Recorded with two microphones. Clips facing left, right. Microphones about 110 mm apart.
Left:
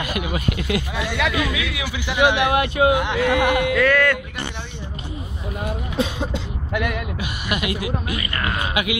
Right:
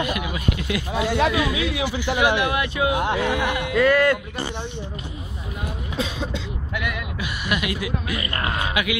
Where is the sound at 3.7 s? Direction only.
30° right (ahead or behind).